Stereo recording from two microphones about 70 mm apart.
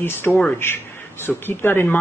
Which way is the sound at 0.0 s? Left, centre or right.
Left.